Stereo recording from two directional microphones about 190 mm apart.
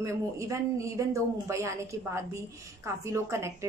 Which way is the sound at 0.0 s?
15° right (ahead or behind).